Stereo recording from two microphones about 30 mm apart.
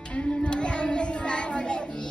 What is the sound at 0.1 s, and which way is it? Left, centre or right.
Child singing, left.